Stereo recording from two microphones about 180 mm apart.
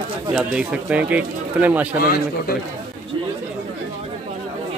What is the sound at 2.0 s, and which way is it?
Speech, 55° left (ahead or behind).